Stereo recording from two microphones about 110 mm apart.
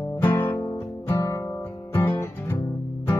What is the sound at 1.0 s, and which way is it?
Guitar, 30° left (ahead or behind).